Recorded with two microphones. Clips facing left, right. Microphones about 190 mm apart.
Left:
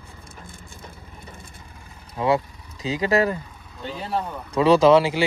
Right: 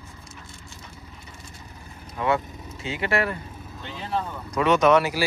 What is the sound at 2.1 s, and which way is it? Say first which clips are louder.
Speech: left 3 dB; 35° left (ahead or behind).